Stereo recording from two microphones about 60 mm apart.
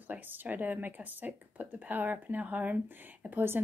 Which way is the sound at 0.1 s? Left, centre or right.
Right.